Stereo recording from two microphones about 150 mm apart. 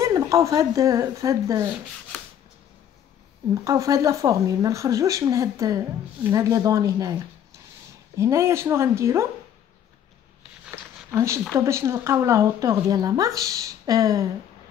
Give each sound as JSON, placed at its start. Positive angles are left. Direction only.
{"t": 0.0, "sound": "speech", "side_deg": -20}
{"t": 3.5, "sound": "speech", "side_deg": -20}
{"t": 11.1, "sound": "speech", "side_deg": -20}